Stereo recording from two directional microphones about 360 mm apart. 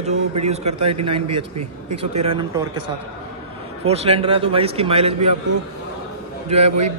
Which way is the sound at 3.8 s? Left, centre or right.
Centre.